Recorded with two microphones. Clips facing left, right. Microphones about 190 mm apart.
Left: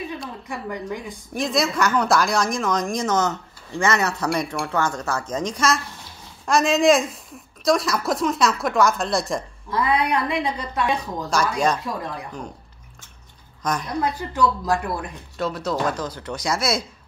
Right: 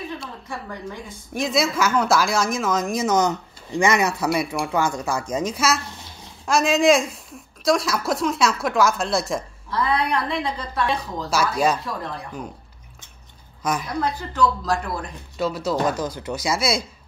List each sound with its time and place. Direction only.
0.5 s a woman's voice: 15° left (ahead or behind)
1.3 s a woman's voice: centre (ahead or behind)
9.7 s a woman's voice: 15° left (ahead or behind)
11.2 s speech: 5° right (ahead or behind)
13.6 s a woman's voice: 5° right (ahead or behind)
14.0 s a woman's voice: 15° left (ahead or behind)
15.3 s speech: centre (ahead or behind)